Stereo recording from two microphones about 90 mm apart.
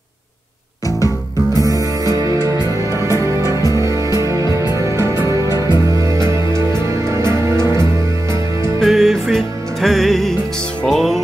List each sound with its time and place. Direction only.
0.8 s music: 40° left (ahead or behind)
1.6 s music: 40° right (ahead or behind)
3.6 s music: 40° left (ahead or behind)
3.9 s music: 35° right (ahead or behind)
5.2 s music: 45° left (ahead or behind)
5.7 s music: 35° right (ahead or behind)
8.7 s music: centre (ahead or behind)